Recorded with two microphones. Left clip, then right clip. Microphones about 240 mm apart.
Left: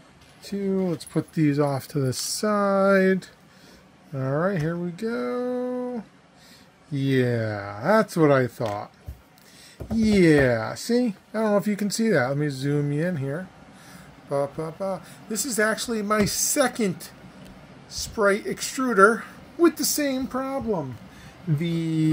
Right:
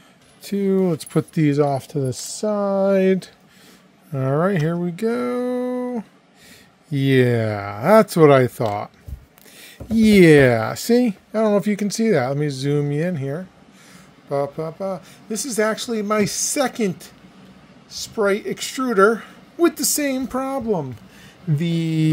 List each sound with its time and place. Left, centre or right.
0.5 s speech: right; by 2.9 s centre
4.1 s speech: right
10.1 s speech: right
18.1 s speech: right